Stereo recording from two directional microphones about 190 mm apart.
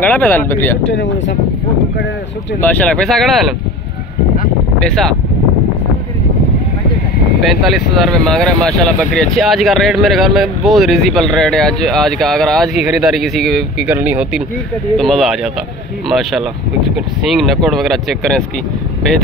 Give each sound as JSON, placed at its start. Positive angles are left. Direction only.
{"t": 0.0, "sound": "speech", "side_deg": 10}
{"t": 0.8, "sound": "speech", "side_deg": 70}
{"t": 2.6, "sound": "speech", "side_deg": 5}
{"t": 4.7, "sound": "speech", "side_deg": 5}
{"t": 7.4, "sound": "speech", "side_deg": 0}
{"t": 13.8, "sound": "speech", "side_deg": -10}